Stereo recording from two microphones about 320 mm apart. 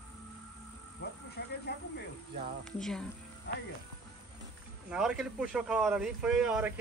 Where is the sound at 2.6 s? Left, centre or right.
Centre.